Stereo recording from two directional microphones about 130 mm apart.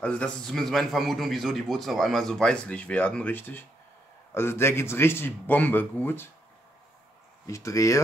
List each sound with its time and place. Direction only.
0.0 s a man's voice: 10° left (ahead or behind)
7.4 s speech: 25° left (ahead or behind)